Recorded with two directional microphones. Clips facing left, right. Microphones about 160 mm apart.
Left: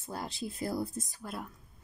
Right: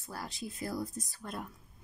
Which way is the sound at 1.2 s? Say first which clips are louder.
Right 1 dB; 5° left (ahead or behind).